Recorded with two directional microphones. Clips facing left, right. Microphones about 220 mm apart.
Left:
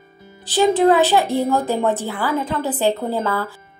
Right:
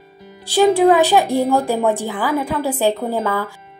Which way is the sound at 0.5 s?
10° right (ahead or behind).